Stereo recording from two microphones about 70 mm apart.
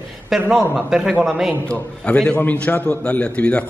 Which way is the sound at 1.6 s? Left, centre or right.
Centre.